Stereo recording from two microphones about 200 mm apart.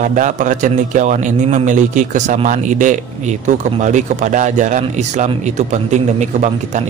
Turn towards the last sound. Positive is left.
turn(degrees=-35)  # may be behind; listen again after turning